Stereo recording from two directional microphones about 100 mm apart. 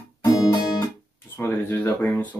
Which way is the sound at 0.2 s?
40° left (ahead or behind).